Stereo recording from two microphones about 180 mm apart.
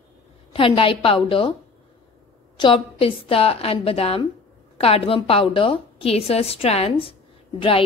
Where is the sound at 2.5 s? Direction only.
30° left (ahead or behind).